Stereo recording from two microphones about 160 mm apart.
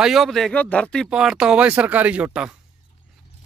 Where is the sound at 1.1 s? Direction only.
5° right (ahead or behind).